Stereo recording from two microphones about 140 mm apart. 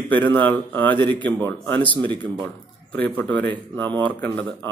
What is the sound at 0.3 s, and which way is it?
Speech, 15° left (ahead or behind).